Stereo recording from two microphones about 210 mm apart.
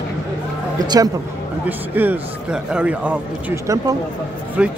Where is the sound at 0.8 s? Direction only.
20° right (ahead or behind).